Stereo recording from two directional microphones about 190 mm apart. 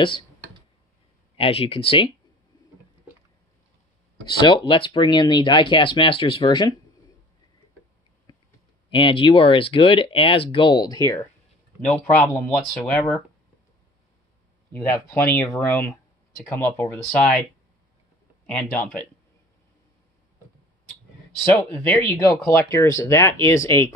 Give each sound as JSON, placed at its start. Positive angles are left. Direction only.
{"t": 1.4, "sound": "speech", "side_deg": 30}
{"t": 4.4, "sound": "speech", "side_deg": 25}
{"t": 8.3, "sound": "a sound", "side_deg": 20}
{"t": 8.9, "sound": "speech", "side_deg": 25}
{"t": 11.9, "sound": "speech", "side_deg": 10}
{"t": 14.7, "sound": "speech", "side_deg": 10}
{"t": 18.5, "sound": "speech", "side_deg": 5}
{"t": 21.5, "sound": "speech", "side_deg": 10}